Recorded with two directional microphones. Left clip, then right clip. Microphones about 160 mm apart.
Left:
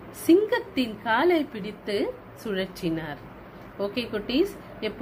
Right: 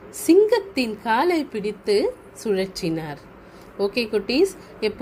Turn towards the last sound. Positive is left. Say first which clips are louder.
# right 8 dB
turn(degrees=-50)  # may be behind; listen again after turning